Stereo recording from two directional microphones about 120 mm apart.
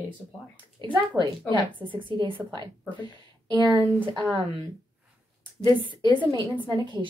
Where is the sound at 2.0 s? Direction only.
45° right (ahead or behind).